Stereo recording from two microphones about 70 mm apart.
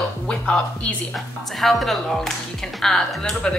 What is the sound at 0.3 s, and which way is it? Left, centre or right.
Speech, centre.